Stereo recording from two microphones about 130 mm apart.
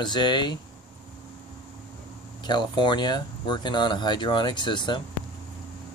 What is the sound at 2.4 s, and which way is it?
Speech, 35° left (ahead or behind).